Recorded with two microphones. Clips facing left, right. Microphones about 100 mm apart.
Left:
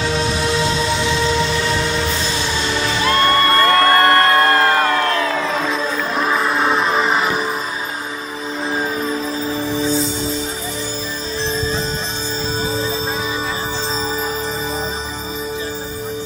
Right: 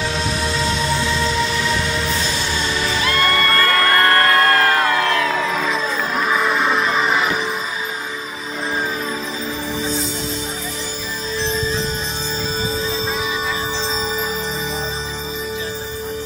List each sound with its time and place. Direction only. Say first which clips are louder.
3.0 s music: left 4 dB; 30° left (ahead or behind)
6.3 s music: even; 5° left (ahead or behind)